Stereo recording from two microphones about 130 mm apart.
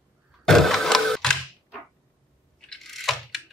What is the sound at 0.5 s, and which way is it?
Sewing machine, centre (ahead or behind).